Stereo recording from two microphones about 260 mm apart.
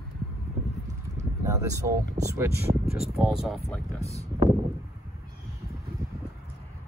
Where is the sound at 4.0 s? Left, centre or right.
Left.